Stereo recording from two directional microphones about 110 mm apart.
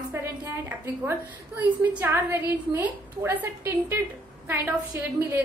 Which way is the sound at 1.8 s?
15° right (ahead or behind).